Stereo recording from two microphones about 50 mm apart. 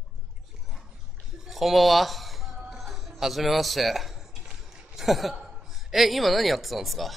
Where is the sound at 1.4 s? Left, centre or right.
Centre.